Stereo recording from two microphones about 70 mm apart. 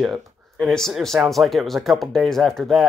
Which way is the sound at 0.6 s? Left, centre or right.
Centre.